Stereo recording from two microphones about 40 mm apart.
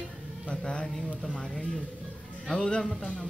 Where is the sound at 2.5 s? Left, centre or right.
Centre.